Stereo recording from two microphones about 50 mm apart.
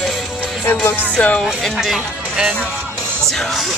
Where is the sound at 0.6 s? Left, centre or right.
Left.